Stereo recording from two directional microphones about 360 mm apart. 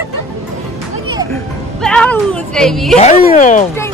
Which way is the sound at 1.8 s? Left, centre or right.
Centre.